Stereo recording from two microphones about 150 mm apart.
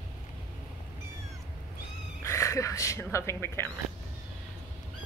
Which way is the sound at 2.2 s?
20° left (ahead or behind).